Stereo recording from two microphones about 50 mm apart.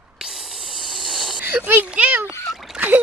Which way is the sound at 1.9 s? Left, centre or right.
Right.